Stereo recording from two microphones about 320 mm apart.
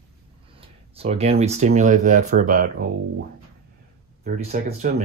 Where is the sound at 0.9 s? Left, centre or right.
Centre.